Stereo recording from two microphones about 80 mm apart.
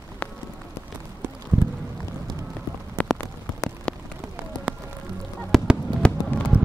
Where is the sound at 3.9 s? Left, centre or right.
Centre.